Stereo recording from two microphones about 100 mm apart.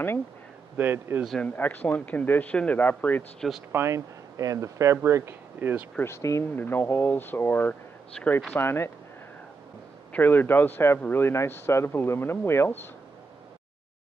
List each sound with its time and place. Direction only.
0.7 s speech: 20° right (ahead or behind)
1.4 s speech: 20° left (ahead or behind)
3.3 s speech: centre (ahead or behind)
3.7 s speech: 30° right (ahead or behind)
5.9 s speech: 25° left (ahead or behind)
8.2 s speech: 5° left (ahead or behind)
8.5 s speech: 25° left (ahead or behind)
10.1 s speech: 20° left (ahead or behind)